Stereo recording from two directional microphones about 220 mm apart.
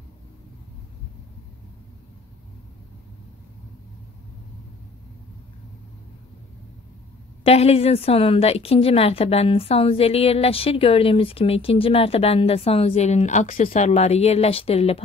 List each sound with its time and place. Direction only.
7.4 s a woman's voice: 25° left (ahead or behind)